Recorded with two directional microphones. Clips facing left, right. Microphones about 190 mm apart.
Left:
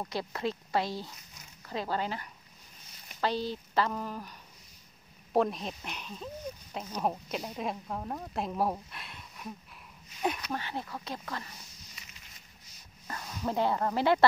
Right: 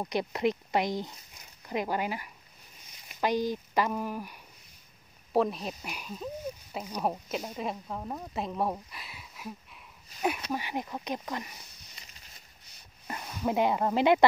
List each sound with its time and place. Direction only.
0.0 s speech: 20° right (ahead or behind)
5.3 s speech: centre (ahead or behind)
10.5 s speech: 15° right (ahead or behind)
13.0 s speech: 15° right (ahead or behind)